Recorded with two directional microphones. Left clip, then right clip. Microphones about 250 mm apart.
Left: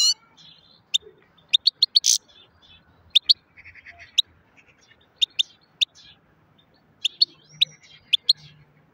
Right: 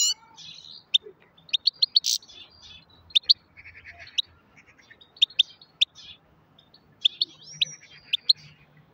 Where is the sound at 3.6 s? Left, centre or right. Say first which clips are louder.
Left 1 dB; centre.